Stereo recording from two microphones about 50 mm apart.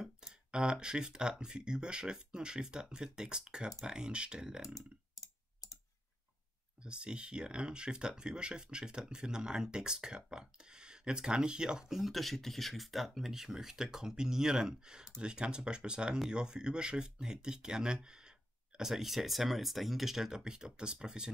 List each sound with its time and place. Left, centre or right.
0.0 s a sound: centre
1.4 s speech: centre
5.1 s typing: left
6.8 s speech: centre